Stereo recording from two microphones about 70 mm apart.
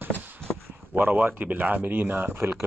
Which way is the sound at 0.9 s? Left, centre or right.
Right.